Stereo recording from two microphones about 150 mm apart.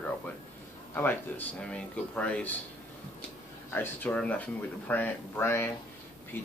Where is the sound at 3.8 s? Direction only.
10° left (ahead or behind).